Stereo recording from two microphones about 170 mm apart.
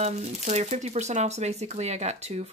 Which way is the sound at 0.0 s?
40° right (ahead or behind).